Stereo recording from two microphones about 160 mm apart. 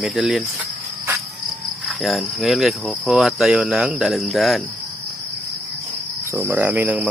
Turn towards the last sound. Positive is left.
turn(degrees=-10)  # may be behind; listen again after turning